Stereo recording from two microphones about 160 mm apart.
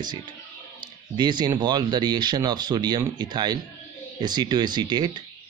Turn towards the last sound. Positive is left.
turn(degrees=-25)  # may be behind; listen again after turning